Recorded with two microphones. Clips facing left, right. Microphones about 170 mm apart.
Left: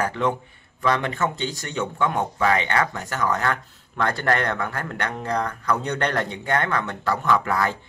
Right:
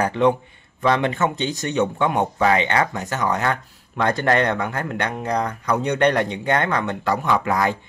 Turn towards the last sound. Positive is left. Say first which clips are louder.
# right 2 dB
turn(degrees=-15)  # may be behind; listen again after turning